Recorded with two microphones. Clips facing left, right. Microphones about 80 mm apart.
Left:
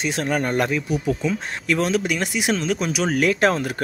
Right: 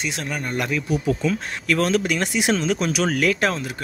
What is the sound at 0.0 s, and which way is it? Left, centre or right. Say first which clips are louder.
Speech: left 5 dB; left.